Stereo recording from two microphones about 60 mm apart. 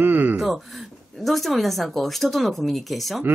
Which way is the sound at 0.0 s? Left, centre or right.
Right.